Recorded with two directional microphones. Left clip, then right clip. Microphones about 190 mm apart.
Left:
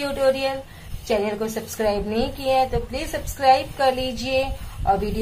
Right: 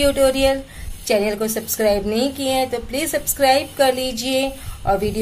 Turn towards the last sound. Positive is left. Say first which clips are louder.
# right 2 dB
turn(degrees=-35)  # may be behind; listen again after turning